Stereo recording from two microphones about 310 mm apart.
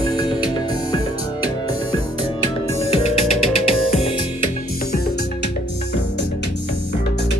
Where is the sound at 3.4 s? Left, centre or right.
Centre.